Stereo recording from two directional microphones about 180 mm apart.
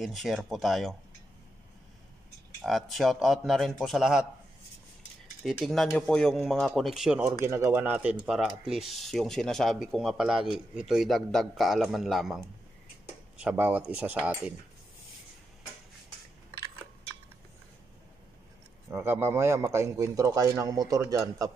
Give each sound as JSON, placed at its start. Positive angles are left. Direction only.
{"t": 0.0, "sound": "speech", "side_deg": 0}
{"t": 2.6, "sound": "speech", "side_deg": 0}
{"t": 5.4, "sound": "speech", "side_deg": 0}
{"t": 7.4, "sound": "a man's voice", "side_deg": -15}
{"t": 13.4, "sound": "a man's voice", "side_deg": -5}
{"t": 18.9, "sound": "a man's voice", "side_deg": -15}